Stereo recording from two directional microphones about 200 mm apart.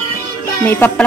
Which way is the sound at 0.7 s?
10° left (ahead or behind).